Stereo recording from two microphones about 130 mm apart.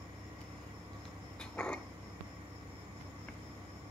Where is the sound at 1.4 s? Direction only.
5° left (ahead or behind).